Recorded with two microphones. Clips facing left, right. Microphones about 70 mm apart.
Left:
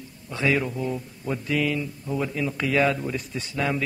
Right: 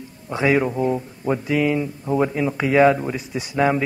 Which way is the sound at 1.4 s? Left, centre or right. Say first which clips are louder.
Right 4 dB; centre.